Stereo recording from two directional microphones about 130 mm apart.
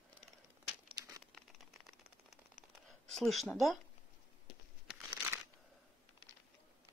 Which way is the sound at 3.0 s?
Centre (ahead or behind).